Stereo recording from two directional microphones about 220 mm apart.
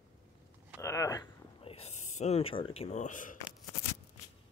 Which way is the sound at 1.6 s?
25° left (ahead or behind).